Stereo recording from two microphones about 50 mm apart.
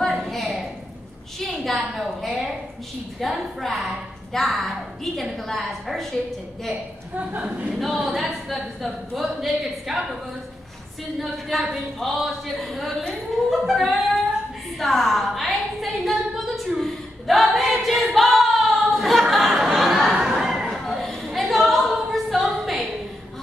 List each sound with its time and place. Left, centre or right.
0.0 s a sound: centre
2.0 s speech: centre
6.7 s a man's voice: right
7.8 s speech: centre
11.1 s speech: centre
14.8 s a sound: centre